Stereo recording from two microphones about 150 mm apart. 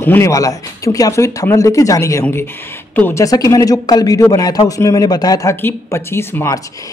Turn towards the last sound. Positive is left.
turn(degrees=20)  # may be behind; listen again after turning